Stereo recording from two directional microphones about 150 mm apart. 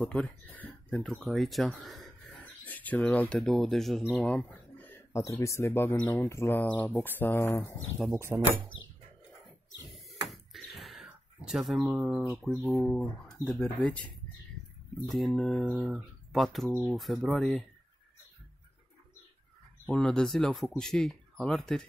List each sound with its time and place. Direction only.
0.0 s speech: 10° left (ahead or behind)
2.6 s speech: 10° left (ahead or behind)
8.1 s speech: 15° right (ahead or behind)
9.9 s a sound: centre (ahead or behind)
12.0 s speech: centre (ahead or behind)
15.0 s speech: centre (ahead or behind)
15.6 s speech: 10° right (ahead or behind)
19.9 s speech: 5° left (ahead or behind)